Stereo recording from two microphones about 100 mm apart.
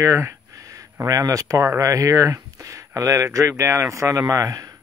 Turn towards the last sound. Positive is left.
turn(degrees=-35)  # may be behind; listen again after turning